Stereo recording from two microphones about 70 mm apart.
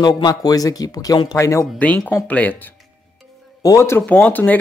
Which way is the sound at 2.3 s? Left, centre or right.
Left.